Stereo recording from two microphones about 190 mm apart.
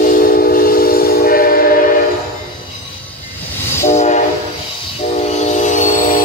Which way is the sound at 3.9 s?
40° left (ahead or behind).